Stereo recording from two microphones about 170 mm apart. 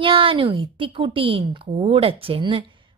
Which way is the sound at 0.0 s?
30° right (ahead or behind).